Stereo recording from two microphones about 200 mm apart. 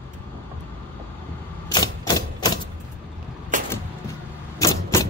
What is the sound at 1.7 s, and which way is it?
Typewriter, 20° left (ahead or behind).